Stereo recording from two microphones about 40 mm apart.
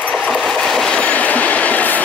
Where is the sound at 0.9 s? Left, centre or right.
Left.